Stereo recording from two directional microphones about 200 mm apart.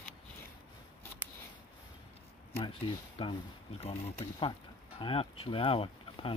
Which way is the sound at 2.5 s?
25° left (ahead or behind).